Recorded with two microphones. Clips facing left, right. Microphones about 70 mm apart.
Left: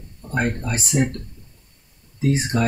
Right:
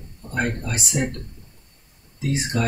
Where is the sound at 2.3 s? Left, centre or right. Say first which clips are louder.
Left 3 dB; left.